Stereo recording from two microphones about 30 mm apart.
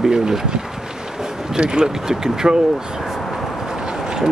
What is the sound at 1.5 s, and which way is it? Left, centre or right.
Speech, right.